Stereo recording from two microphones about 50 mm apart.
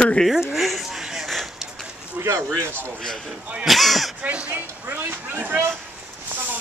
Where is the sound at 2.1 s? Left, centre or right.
Right.